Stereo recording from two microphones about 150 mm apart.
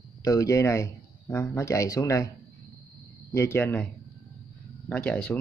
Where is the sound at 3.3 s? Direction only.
15° left (ahead or behind).